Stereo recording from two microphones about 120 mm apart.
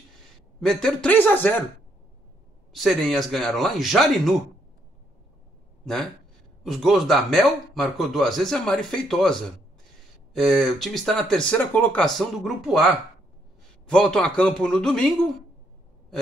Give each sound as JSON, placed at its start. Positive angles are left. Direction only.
{"t": 0.6, "sound": "speech", "side_deg": 5}
{"t": 1.1, "sound": "speech", "side_deg": 15}
{"t": 2.7, "sound": "speech", "side_deg": 0}
{"t": 6.6, "sound": "speech", "side_deg": 0}
{"t": 11.5, "sound": "speech", "side_deg": 15}
{"t": 12.0, "sound": "speech", "side_deg": 0}